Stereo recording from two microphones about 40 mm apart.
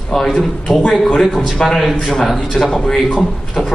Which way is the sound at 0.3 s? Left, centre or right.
Centre.